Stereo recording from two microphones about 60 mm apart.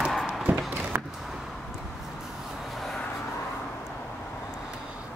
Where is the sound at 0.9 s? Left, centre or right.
Right.